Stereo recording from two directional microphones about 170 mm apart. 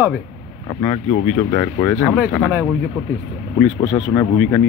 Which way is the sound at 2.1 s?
10° right (ahead or behind).